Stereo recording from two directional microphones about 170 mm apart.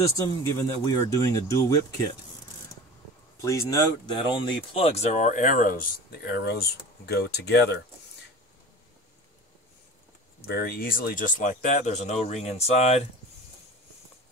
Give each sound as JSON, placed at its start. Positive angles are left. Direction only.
{"t": 0.0, "sound": "speech", "side_deg": 20}
{"t": 3.3, "sound": "speech", "side_deg": 15}
{"t": 10.4, "sound": "speech", "side_deg": 70}